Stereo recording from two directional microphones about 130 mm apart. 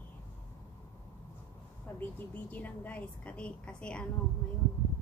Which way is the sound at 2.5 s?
15° left (ahead or behind).